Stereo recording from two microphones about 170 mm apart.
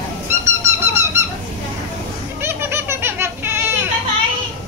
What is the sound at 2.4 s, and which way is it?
Children playing, 15° right (ahead or behind).